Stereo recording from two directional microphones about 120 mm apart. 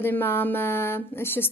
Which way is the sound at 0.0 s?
15° left (ahead or behind).